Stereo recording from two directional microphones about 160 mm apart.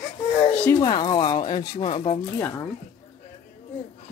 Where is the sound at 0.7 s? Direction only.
30° left (ahead or behind).